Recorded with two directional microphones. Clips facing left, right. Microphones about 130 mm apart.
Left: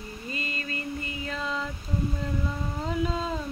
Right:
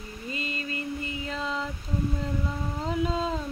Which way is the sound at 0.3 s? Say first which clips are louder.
Right 1 dB; 20° right (ahead or behind).